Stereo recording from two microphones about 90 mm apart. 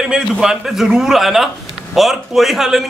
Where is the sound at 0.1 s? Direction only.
5° right (ahead or behind).